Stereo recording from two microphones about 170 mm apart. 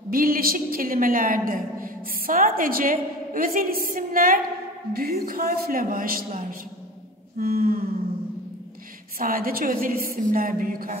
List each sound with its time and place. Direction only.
0.1 s a woman's voice: 60° right (ahead or behind)
7.3 s a woman's voice: 60° right (ahead or behind)
9.2 s a woman's voice: 60° right (ahead or behind)